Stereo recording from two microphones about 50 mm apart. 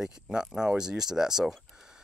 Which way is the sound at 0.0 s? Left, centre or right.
Centre.